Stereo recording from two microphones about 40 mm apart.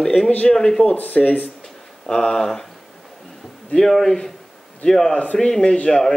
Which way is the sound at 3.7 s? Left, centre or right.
Centre.